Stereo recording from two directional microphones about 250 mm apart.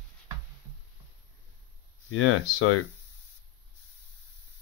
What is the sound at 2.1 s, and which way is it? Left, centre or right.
Speech, left.